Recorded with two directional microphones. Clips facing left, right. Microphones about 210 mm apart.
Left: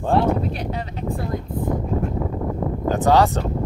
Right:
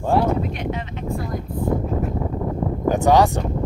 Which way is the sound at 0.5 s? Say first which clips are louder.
Even; 35° left (ahead or behind).